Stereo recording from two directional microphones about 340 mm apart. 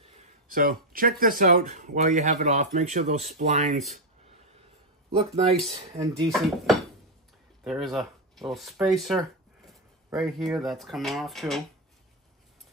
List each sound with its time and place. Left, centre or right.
0.0 s speech: right
5.1 s speech: centre
6.3 s speech: centre